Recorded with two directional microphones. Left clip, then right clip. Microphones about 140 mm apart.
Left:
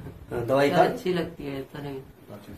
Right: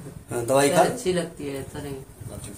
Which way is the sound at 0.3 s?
50° right (ahead or behind).